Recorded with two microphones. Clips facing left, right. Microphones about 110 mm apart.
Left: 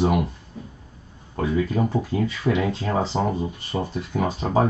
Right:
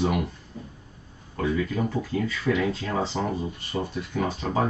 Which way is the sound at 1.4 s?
25° left (ahead or behind).